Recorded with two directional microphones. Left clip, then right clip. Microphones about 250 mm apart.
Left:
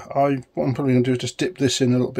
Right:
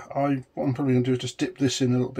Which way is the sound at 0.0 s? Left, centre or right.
Left.